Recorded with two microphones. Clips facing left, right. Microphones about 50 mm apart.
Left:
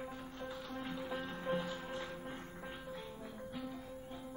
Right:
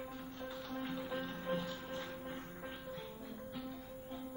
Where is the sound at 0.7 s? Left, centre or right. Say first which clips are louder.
Right 2 dB; centre.